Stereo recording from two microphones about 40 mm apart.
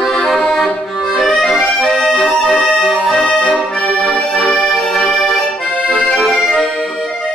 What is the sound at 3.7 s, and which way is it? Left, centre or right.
Accordion, left.